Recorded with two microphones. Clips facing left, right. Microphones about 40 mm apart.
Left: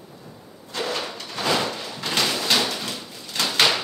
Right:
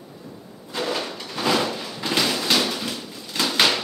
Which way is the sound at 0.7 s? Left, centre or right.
Centre.